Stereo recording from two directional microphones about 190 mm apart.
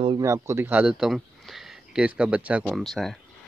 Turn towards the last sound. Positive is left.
turn(degrees=0)  # may be behind; listen again after turning